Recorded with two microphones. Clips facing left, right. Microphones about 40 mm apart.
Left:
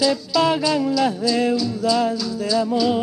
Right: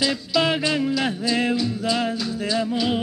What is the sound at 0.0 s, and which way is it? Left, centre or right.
Music, centre.